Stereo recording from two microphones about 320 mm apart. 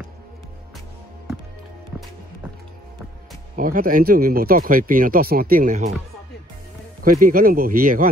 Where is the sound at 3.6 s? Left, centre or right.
Right.